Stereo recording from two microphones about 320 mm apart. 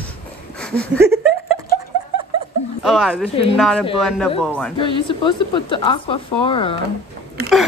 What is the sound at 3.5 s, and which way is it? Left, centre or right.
Speech, centre.